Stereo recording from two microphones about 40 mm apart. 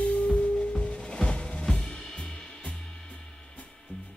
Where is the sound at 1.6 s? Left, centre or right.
Centre.